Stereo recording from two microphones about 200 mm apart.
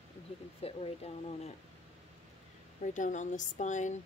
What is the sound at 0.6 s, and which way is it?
Speech, 30° left (ahead or behind).